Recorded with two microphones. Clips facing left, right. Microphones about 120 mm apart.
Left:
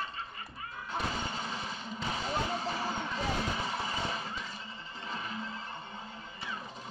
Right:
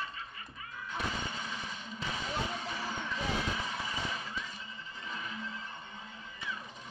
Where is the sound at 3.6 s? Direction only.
30° left (ahead or behind).